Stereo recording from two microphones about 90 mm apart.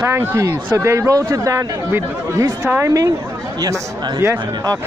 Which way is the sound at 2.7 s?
15° right (ahead or behind).